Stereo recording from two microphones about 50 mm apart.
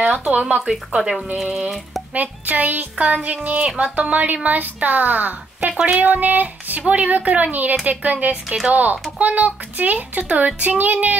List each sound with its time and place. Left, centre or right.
0.0 s speech: centre
0.3 s speech: right
0.7 s speech: centre
1.4 s music: centre
2.1 s a child's voice: right
5.6 s a child's voice: right